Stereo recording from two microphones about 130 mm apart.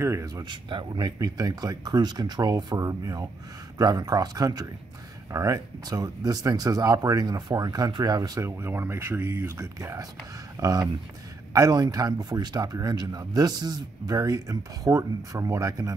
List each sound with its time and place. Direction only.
0.0 s speech: 25° right (ahead or behind)
0.5 s speech: 40° right (ahead or behind)